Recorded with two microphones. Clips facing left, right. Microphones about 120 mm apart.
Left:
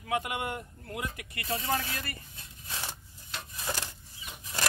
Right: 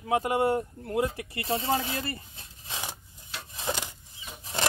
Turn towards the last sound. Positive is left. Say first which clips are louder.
# right 4 dB
turn(degrees=-25)  # may be behind; listen again after turning